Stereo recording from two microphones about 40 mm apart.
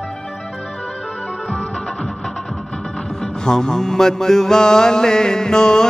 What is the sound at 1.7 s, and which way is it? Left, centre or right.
Music, left.